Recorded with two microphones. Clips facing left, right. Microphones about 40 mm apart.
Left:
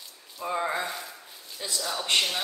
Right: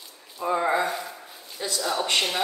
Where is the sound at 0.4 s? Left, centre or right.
Centre.